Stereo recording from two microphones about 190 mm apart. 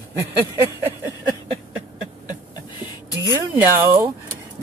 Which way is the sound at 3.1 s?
15° right (ahead or behind).